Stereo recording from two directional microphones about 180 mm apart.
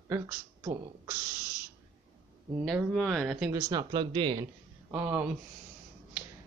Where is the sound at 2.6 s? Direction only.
Centre (ahead or behind).